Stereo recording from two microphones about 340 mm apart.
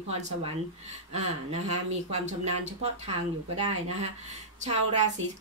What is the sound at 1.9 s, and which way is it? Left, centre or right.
Speech, centre.